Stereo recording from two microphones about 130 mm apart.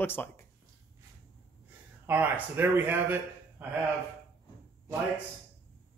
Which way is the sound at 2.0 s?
15° right (ahead or behind).